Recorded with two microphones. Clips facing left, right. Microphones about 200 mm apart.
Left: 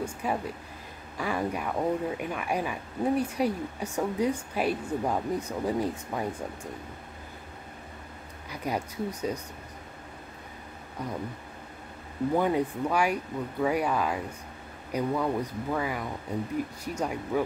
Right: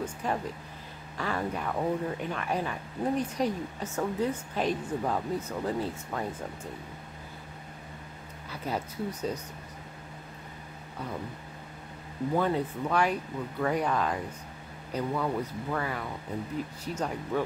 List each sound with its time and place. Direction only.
0.0 s speech: 10° left (ahead or behind)
8.5 s speech: 15° left (ahead or behind)
12.4 s speech: 15° left (ahead or behind)